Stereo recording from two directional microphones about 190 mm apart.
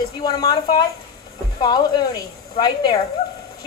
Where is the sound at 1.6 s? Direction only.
20° left (ahead or behind).